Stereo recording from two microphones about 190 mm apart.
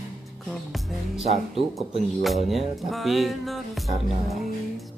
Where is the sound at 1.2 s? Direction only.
30° right (ahead or behind).